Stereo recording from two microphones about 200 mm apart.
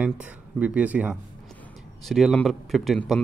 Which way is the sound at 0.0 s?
5° right (ahead or behind).